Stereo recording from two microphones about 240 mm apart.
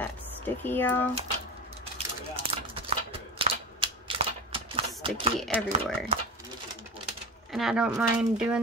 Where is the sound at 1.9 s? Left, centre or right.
Right.